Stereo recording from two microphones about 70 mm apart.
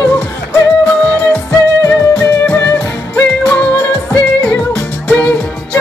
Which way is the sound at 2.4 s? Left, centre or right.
Left.